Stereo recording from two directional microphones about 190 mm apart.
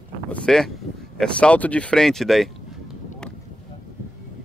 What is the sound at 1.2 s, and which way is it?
Speech, 5° left (ahead or behind).